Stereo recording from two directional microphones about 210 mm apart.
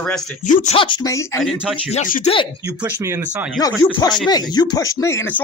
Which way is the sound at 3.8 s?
20° left (ahead or behind).